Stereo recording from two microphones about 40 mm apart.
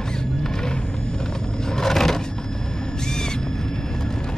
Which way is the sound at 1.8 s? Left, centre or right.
Centre.